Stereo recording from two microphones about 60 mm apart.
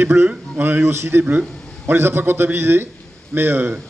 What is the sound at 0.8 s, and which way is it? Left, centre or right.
A man's voice, right.